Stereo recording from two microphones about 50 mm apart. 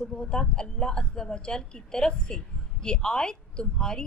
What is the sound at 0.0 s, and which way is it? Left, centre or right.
A woman's voice, centre.